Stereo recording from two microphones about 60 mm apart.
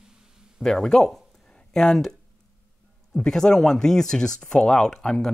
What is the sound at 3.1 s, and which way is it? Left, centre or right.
Speech, centre.